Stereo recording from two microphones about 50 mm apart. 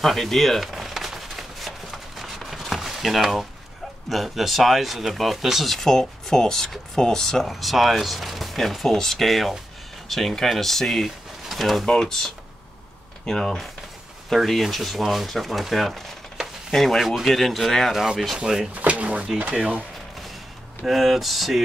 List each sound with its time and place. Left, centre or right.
0.0 s a sound: centre
4.1 s speech: centre
14.3 s speech: centre
17.9 s speech: centre
18.8 s speech: right
20.8 s speech: centre